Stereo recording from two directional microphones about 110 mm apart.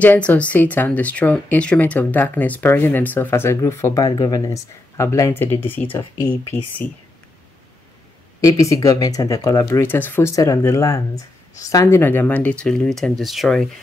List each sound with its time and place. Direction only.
0.0 s speech: 15° left (ahead or behind)
8.4 s speech: 30° left (ahead or behind)
10.3 s speech: 30° left (ahead or behind); by 13.7 s centre (ahead or behind)